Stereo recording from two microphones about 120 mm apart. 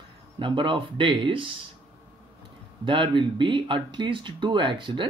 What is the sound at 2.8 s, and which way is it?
Speech, 45° right (ahead or behind).